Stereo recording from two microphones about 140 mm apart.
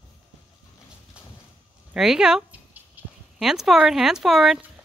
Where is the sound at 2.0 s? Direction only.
5° right (ahead or behind).